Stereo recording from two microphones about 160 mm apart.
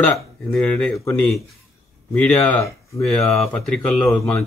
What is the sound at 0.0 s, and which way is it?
Speech, 5° left (ahead or behind).